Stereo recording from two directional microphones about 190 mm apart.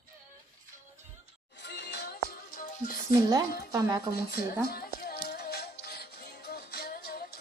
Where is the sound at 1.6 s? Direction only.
65° left (ahead or behind).